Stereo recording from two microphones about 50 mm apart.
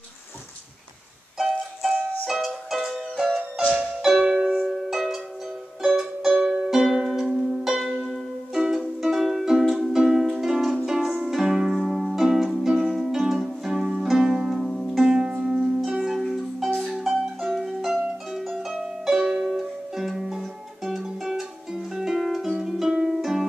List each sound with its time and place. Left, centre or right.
1.4 s music: centre
3.5 s music: centre
15.0 s music: right
15.8 s music: centre
18.3 s harp: centre
18.7 s music: centre